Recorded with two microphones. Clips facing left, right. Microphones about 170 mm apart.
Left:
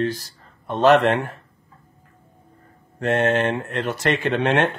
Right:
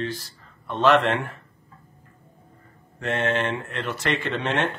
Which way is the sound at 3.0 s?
45° left (ahead or behind).